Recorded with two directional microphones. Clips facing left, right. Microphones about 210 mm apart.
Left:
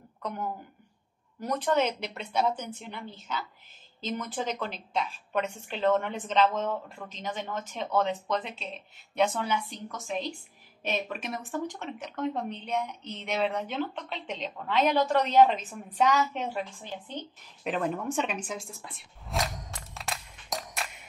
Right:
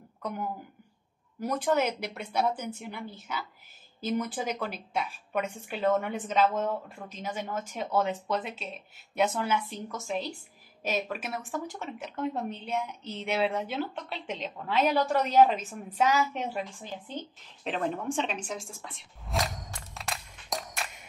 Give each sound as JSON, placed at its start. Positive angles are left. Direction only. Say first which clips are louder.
{"t": 1.4, "sound": "a woman's voice", "louder": "even", "side_deg": -10}
{"t": 18.0, "sound": "a woman's voice", "louder": "left 1 dB", "side_deg": -30}
{"t": 19.2, "sound": "a sound", "louder": "even", "side_deg": 0}